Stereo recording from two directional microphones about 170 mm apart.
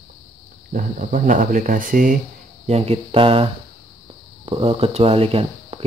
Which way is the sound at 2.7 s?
35° right (ahead or behind).